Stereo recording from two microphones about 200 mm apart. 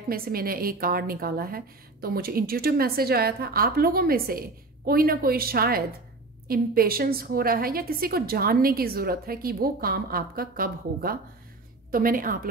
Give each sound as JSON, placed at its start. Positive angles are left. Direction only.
{"t": 0.1, "sound": "speech", "side_deg": -45}